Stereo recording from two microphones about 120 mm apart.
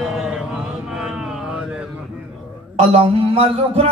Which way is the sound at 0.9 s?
5° right (ahead or behind).